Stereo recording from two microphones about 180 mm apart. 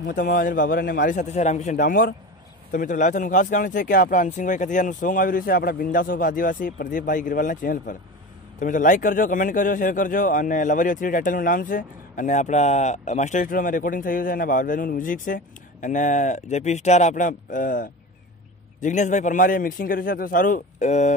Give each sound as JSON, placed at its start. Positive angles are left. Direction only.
{"t": 0.1, "sound": "a man's voice", "side_deg": 50}